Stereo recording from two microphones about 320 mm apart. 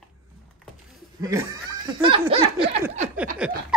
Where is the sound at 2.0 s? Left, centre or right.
Centre.